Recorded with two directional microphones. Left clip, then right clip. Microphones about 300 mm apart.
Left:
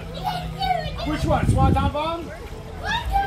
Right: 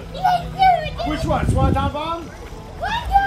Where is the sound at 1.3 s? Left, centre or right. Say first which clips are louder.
Left 1 dB; centre.